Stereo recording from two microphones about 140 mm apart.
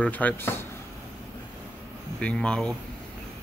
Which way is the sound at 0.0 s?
10° left (ahead or behind).